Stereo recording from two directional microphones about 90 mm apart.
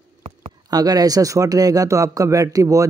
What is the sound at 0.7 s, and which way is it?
A man's voice, 45° right (ahead or behind).